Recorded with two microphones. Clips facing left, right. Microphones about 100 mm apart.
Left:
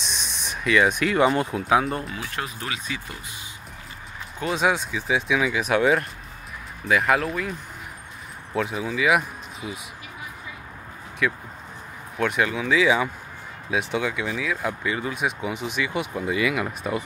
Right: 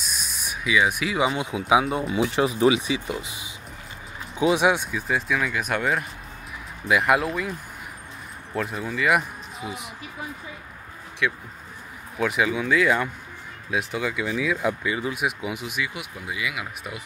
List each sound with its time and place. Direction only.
0.0 s speech: 5° right (ahead or behind)
2.1 s speech: 20° right (ahead or behind)
4.4 s speech: 5° right (ahead or behind)
8.5 s speech: centre (ahead or behind)
11.2 s speech: centre (ahead or behind)